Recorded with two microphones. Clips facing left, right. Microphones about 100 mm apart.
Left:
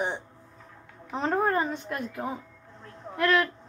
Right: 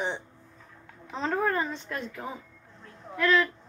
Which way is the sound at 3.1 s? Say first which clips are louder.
Even; 55° left (ahead or behind).